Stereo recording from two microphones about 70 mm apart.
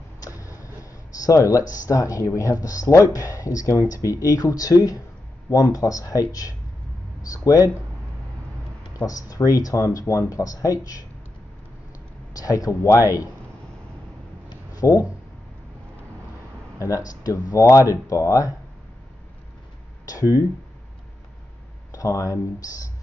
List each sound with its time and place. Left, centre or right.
0.2 s a sound: left
1.2 s speech: left
8.9 s speech: left
12.4 s speech: left
14.8 s speech: left
16.7 s speech: left
20.1 s speech: left
21.9 s speech: left